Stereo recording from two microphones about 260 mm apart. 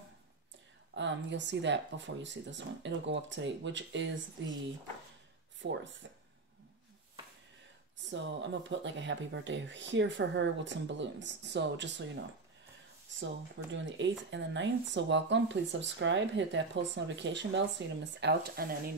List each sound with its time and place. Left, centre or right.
0.9 s speech: right
5.6 s speech: right
8.1 s speech: right
13.2 s speech: right